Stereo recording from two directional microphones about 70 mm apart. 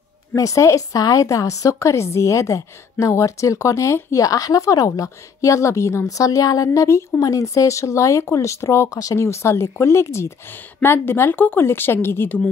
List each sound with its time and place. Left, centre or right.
0.4 s a woman's voice: left
10.5 s a woman's voice: left